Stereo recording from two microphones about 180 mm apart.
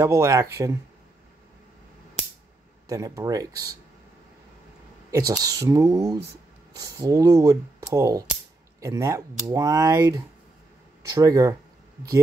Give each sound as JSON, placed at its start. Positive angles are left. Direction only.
{"t": 0.0, "sound": "speech", "side_deg": -15}
{"t": 2.9, "sound": "speech", "side_deg": -20}
{"t": 5.2, "sound": "speech", "side_deg": -20}